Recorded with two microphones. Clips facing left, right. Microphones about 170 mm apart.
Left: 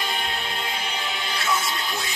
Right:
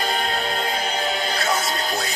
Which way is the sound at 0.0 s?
40° right (ahead or behind).